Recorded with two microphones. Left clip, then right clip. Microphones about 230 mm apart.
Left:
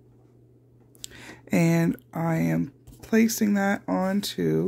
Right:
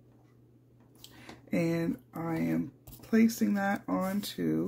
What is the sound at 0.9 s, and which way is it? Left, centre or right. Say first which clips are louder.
Speech: left 8 dB; left.